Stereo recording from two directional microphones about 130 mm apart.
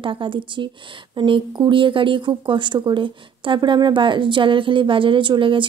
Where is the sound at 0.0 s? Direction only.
40° right (ahead or behind).